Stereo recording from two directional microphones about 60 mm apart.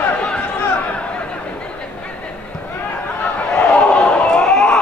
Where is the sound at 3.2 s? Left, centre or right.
Left.